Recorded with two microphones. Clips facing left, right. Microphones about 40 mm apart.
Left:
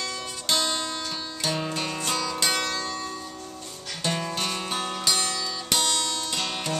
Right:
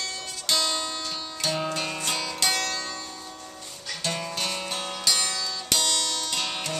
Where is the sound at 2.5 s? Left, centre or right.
Centre.